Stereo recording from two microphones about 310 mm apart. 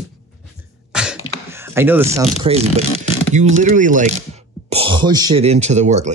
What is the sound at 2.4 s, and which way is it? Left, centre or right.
Speech, centre.